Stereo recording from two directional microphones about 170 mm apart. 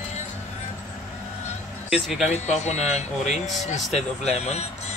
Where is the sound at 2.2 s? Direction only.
40° left (ahead or behind).